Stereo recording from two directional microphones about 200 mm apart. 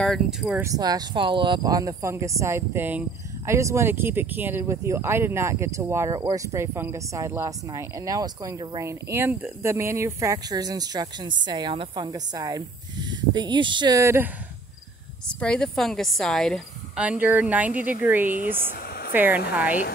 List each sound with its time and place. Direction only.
0.0 s a woman's voice: centre (ahead or behind)
0.7 s speech: 20° right (ahead or behind)
15.2 s a woman's voice: 5° left (ahead or behind)
18.3 s speech: 40° right (ahead or behind)
19.1 s speech: 10° right (ahead or behind)